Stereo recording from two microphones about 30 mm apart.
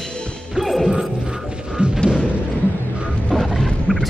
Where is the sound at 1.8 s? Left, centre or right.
Right.